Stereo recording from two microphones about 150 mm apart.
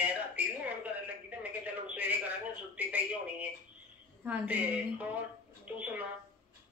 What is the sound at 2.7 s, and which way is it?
A woman's voice, 10° right (ahead or behind).